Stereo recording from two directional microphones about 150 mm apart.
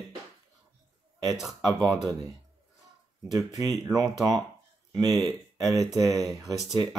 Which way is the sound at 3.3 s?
25° right (ahead or behind).